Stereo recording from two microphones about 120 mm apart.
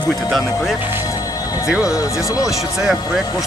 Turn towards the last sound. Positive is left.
turn(degrees=-5)  # may be behind; listen again after turning